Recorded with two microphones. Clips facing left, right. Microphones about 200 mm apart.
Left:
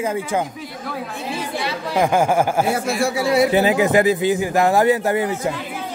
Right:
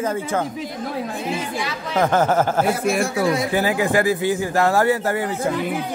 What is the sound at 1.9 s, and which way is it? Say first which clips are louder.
A man's voice: left 1 dB; 10° left (ahead or behind).